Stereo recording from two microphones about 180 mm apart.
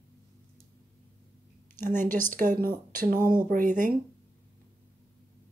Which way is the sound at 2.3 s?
45° right (ahead or behind).